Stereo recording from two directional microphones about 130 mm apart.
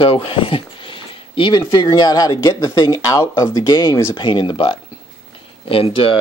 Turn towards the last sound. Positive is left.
turn(degrees=45)  # may be behind; listen again after turning